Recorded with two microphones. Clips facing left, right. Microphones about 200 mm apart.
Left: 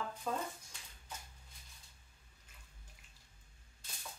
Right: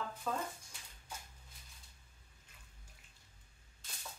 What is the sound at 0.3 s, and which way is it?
Speech, 10° left (ahead or behind).